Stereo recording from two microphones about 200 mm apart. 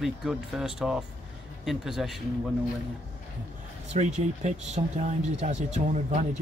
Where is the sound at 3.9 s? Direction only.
35° right (ahead or behind).